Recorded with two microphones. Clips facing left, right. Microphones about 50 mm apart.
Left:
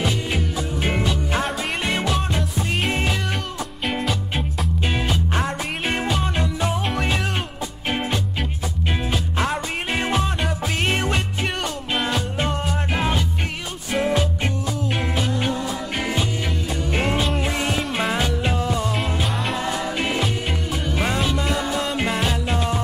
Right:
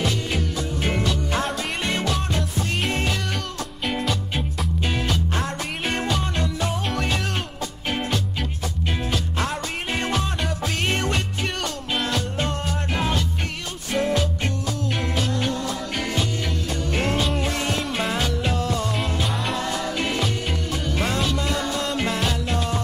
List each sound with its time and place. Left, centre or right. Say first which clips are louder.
0.0 s music: left 1 dB; centre
4.8 s music: left 1 dB; centre
9.1 s music: left 4 dB; centre
19.2 s music: left 1 dB; centre
19.6 s music: left 1 dB; centre